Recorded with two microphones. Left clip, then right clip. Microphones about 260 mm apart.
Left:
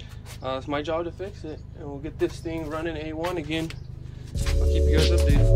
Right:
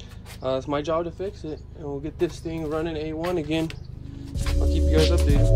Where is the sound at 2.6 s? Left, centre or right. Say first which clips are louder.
Right 7 dB; left.